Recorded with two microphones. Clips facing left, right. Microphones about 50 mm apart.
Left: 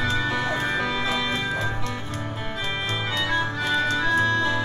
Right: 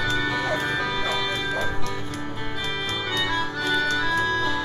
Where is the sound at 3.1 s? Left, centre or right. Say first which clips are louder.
Left 1 dB; left.